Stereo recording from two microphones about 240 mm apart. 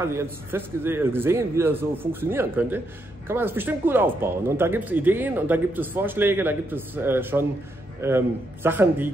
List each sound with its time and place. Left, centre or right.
0.0 s speech: centre